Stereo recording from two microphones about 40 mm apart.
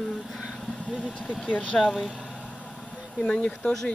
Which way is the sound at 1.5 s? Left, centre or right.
Left.